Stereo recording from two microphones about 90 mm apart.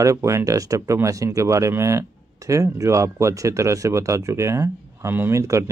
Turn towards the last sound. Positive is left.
turn(degrees=-35)  # may be behind; listen again after turning